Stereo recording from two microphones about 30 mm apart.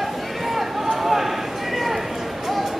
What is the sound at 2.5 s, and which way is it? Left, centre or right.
Music, centre.